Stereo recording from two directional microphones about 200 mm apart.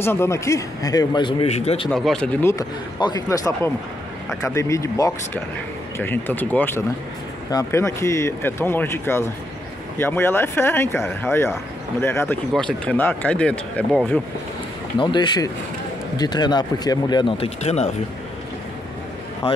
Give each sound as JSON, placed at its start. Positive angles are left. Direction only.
{"t": 0.0, "sound": "a man's voice", "side_deg": 10}
{"t": 1.9, "sound": "speech", "side_deg": 0}
{"t": 2.4, "sound": "speech", "side_deg": 20}
{"t": 15.0, "sound": "a man's voice", "side_deg": 20}